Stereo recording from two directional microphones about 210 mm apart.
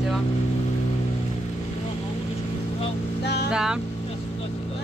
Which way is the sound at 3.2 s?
50° left (ahead or behind).